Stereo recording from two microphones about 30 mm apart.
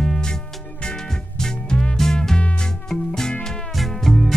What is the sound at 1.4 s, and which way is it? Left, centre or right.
Music, left.